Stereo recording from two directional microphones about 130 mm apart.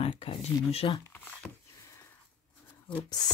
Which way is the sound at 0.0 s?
45° left (ahead or behind).